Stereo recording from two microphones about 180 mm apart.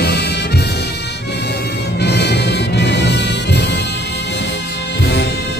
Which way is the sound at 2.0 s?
70° left (ahead or behind).